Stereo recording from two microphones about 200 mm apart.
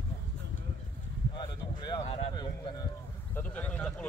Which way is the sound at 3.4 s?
5° left (ahead or behind).